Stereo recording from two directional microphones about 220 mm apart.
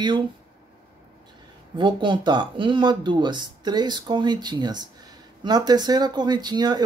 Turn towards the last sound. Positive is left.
turn(degrees=-20)  # may be behind; listen again after turning